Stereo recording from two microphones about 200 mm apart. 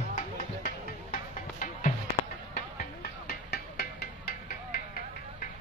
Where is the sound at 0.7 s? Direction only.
40° left (ahead or behind).